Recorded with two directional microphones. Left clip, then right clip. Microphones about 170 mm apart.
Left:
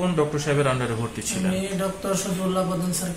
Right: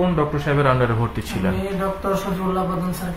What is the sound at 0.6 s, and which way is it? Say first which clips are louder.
Speech: right 6 dB; 45° right (ahead or behind).